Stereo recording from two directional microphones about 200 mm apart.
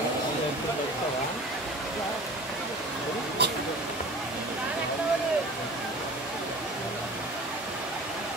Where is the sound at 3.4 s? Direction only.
55° right (ahead or behind).